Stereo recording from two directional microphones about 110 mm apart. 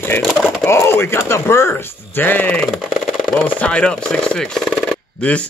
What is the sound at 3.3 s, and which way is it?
Speech, 15° left (ahead or behind).